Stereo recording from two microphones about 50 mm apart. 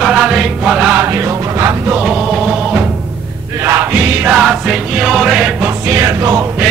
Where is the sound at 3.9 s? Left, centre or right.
Right.